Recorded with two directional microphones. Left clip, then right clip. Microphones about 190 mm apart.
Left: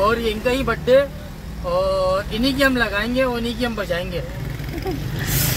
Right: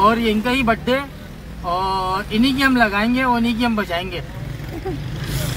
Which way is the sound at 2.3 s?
50° right (ahead or behind).